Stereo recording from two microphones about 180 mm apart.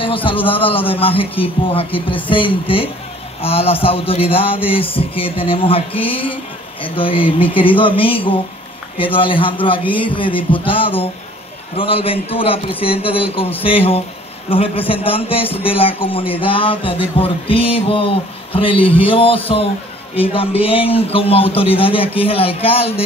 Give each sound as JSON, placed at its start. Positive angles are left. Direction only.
{"t": 0.0, "sound": "a man's voice", "side_deg": 30}